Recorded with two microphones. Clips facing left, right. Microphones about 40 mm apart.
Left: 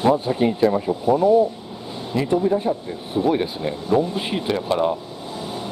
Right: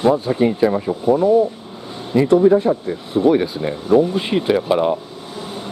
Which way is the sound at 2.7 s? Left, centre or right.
Right.